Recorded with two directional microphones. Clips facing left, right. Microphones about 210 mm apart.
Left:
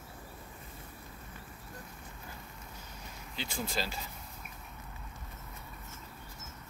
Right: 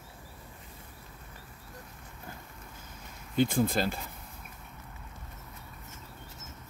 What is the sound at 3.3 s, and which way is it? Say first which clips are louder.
Speech: right 11 dB; 55° right (ahead or behind).